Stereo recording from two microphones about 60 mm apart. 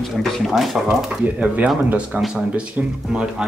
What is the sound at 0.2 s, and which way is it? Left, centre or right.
Speech, centre.